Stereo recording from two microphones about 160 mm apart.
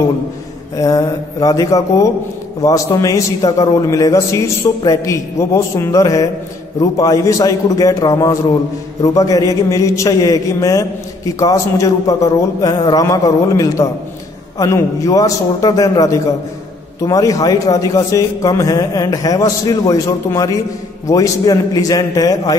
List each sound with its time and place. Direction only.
0.7 s a man's voice: 20° left (ahead or behind)